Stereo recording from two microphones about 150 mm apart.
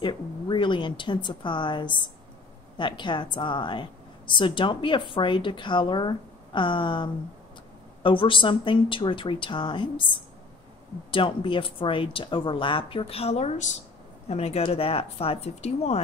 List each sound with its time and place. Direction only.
0.0 s a woman's voice: 30° left (ahead or behind)